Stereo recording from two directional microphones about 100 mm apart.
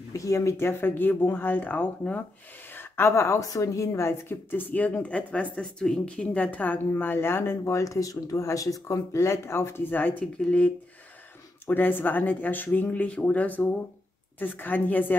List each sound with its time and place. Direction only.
0.1 s a woman's voice: 30° left (ahead or behind)